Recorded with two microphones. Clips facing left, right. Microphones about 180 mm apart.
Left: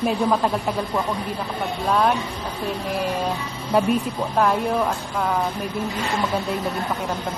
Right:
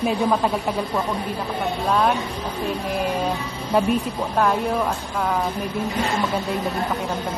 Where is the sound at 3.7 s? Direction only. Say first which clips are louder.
Even; 5° left (ahead or behind).